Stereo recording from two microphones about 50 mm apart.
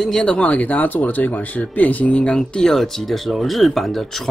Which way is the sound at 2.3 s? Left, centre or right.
Centre.